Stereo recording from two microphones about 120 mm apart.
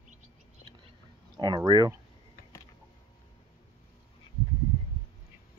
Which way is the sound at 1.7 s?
35° right (ahead or behind).